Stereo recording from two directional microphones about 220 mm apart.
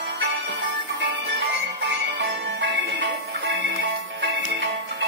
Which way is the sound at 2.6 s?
55° right (ahead or behind).